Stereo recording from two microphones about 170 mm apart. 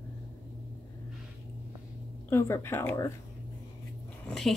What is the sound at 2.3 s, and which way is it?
Speech, 15° left (ahead or behind).